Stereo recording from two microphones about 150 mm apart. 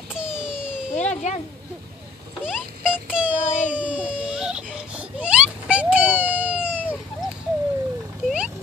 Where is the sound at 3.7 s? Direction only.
10° right (ahead or behind).